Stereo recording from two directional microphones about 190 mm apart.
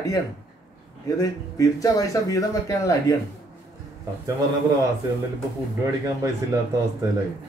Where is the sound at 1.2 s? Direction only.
20° left (ahead or behind).